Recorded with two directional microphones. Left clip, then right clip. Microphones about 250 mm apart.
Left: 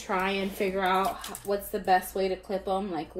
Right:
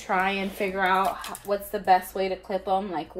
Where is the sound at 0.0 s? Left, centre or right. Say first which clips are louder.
Right 3 dB; centre.